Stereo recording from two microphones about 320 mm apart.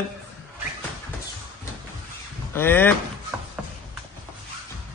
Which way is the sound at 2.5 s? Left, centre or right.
Centre.